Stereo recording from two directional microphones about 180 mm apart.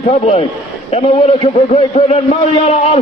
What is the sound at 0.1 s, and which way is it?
A man's voice, 35° left (ahead or behind).